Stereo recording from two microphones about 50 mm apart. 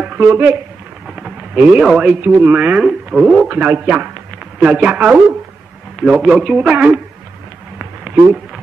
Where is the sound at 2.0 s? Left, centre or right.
Right.